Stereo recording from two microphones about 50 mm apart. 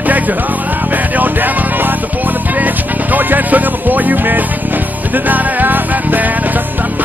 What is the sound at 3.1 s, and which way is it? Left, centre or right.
Music, right.